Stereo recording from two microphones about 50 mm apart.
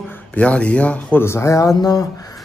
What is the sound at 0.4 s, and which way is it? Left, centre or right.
Speech, left.